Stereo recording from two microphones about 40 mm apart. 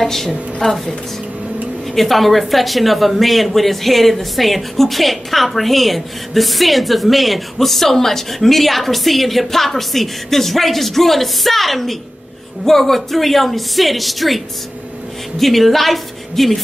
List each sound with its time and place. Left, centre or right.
0.0 s a woman's voice: centre
0.6 s a woman's voice: left
2.0 s speech: centre